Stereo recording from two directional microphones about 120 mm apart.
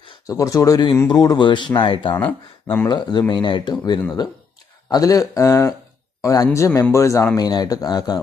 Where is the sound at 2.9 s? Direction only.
35° left (ahead or behind).